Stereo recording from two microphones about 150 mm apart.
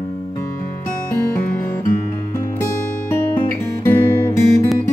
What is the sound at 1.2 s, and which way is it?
Music, 20° left (ahead or behind).